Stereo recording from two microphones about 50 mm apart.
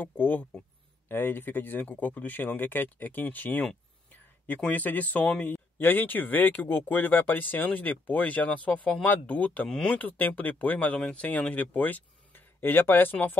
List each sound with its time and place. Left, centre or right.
0.0 s speech: left
4.6 s speech: left
11.0 s speech: left